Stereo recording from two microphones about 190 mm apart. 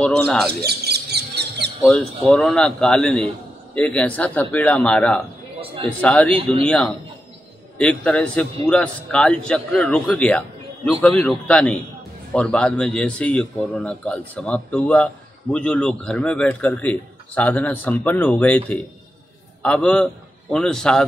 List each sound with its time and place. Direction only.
0.0 s a man's voice: 5° left (ahead or behind)
0.7 s a sound: 60° right (ahead or behind)
1.8 s a man's voice: centre (ahead or behind)